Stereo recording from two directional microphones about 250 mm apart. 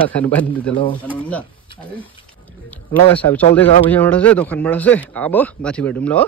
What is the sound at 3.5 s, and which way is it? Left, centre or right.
A man's voice, centre.